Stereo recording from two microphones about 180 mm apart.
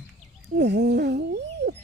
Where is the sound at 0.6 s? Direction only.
70° right (ahead or behind).